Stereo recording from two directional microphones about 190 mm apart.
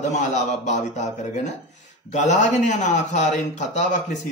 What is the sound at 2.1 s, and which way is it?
Speech, 40° left (ahead or behind).